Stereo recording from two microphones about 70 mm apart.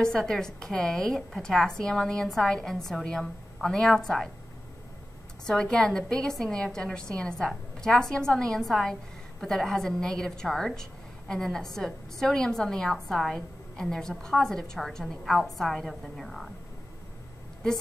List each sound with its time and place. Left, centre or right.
0.0 s a woman's voice: centre
5.4 s a woman's voice: centre